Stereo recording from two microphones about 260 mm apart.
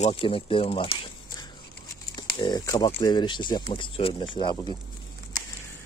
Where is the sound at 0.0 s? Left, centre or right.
Left.